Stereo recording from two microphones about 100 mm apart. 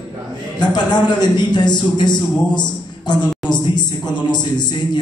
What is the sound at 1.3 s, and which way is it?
A man's voice, 45° left (ahead or behind).